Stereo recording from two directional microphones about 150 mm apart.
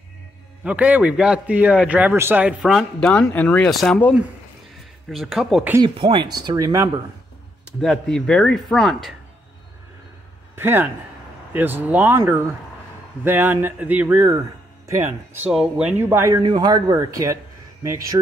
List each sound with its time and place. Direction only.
0.7 s speech: 10° right (ahead or behind)
5.8 s speech: 35° right (ahead or behind)
7.8 s speech: 5° left (ahead or behind)
10.5 s speech: 15° right (ahead or behind)
16.4 s speech: 30° right (ahead or behind)